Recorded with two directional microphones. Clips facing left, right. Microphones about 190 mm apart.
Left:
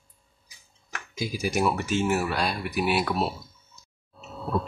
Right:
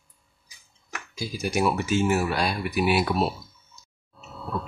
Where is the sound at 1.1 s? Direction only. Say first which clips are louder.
Left 2 dB; 15° left (ahead or behind).